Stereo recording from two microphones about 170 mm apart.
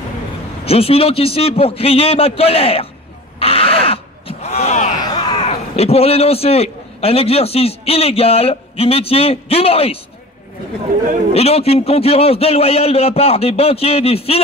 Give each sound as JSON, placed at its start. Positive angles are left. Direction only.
{"t": 0.7, "sound": "a man's voice", "side_deg": 35}
{"t": 3.3, "sound": "a sound", "side_deg": 35}
{"t": 5.4, "sound": "a man's voice", "side_deg": 35}
{"t": 11.3, "sound": "a man's voice", "side_deg": 35}